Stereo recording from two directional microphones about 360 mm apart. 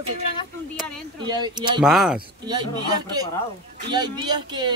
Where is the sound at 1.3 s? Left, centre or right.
Centre.